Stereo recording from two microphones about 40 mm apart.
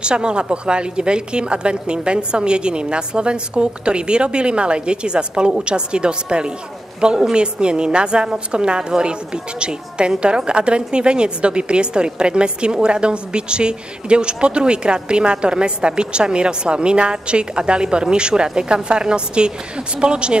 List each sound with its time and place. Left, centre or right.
0.0 s a woman's voice: right